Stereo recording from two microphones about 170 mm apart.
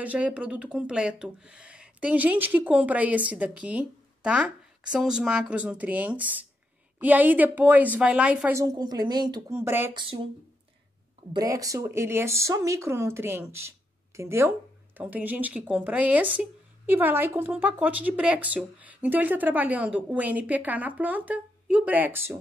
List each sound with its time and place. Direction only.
0.0 s speech: 10° right (ahead or behind)
8.6 s a woman's voice: 25° right (ahead or behind)
9.5 s speech: 15° right (ahead or behind)
9.9 s a woman's voice: 25° right (ahead or behind)
11.3 s speech: 20° right (ahead or behind)